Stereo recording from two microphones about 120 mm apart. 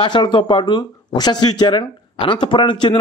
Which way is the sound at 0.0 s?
40° left (ahead or behind).